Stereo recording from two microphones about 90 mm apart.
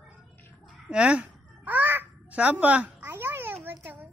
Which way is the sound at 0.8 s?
10° right (ahead or behind).